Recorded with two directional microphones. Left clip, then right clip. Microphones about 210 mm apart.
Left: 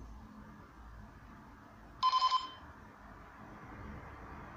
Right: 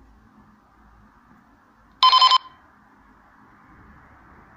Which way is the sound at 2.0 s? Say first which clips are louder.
Right 16 dB; 30° right (ahead or behind).